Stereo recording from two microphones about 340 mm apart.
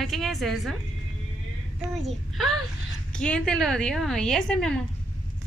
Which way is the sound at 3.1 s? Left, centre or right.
Centre.